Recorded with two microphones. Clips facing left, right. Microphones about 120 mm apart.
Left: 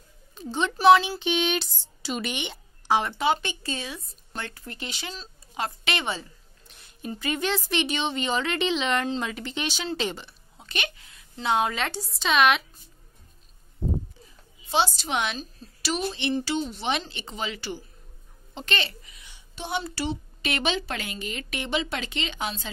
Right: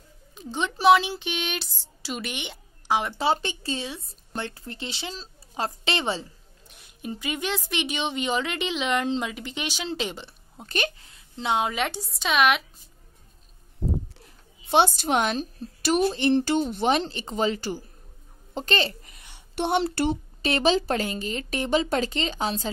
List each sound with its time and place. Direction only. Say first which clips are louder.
0.3 s a sound: left 2 dB; 15° right (ahead or behind)
1.2 s speech: left 6 dB; centre (ahead or behind)
3.2 s speech: even; 30° right (ahead or behind)
6.9 s speech: left 1 dB; 10° right (ahead or behind)
10.6 s speech: right 5 dB; 40° right (ahead or behind)
11.1 s speech: left 1 dB; 20° right (ahead or behind); by 12.6 s 5° right (ahead or behind)
14.1 s a sound: even; 70° right (ahead or behind); by 15.3 s 45° right (ahead or behind)
15.3 s a woman's voice: right 8 dB; 50° right (ahead or behind)
19.1 s a sound: right 11 dB; 55° right (ahead or behind)
20.4 s a woman's voice: right 6 dB; 35° right (ahead or behind)